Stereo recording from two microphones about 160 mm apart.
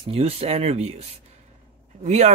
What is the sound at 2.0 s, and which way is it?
Speech, 45° right (ahead or behind).